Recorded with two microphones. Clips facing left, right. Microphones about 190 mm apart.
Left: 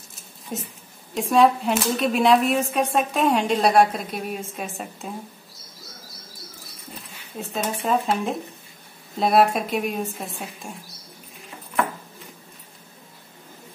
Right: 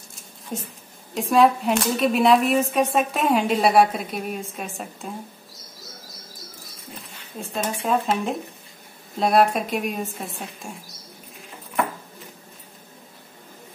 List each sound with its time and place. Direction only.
0.5 s speech: centre (ahead or behind)
7.3 s speech: centre (ahead or behind)